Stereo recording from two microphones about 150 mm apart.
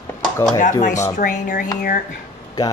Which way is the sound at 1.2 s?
65° left (ahead or behind).